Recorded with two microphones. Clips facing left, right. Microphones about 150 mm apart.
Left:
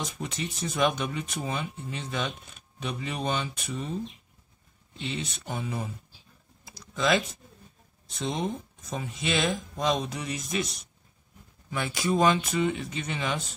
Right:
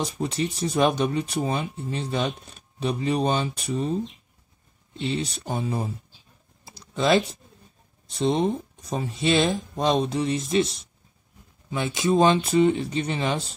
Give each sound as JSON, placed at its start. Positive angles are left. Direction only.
{"t": 0.0, "sound": "speech", "side_deg": -35}
{"t": 5.0, "sound": "speech", "side_deg": -35}
{"t": 6.6, "sound": "typing", "side_deg": -30}
{"t": 8.1, "sound": "speech", "side_deg": -30}
{"t": 11.7, "sound": "speech", "side_deg": -20}